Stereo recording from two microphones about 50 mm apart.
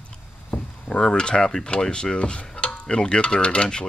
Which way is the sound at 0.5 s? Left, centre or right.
Centre.